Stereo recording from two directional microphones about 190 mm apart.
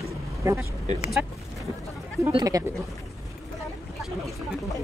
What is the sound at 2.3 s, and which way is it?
Speech, 20° right (ahead or behind).